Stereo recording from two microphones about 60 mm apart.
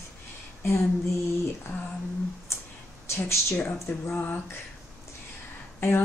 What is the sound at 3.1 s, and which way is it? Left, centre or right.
A woman's voice, left.